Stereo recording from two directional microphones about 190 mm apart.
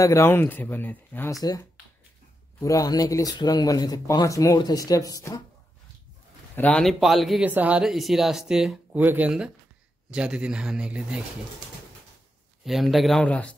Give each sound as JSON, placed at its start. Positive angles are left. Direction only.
{"t": 0.0, "sound": "speech", "side_deg": 15}
{"t": 6.5, "sound": "a man's voice", "side_deg": 5}
{"t": 12.6, "sound": "a man's voice", "side_deg": 0}